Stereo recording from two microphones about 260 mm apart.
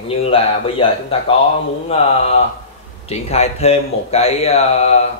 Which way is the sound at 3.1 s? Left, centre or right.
Left.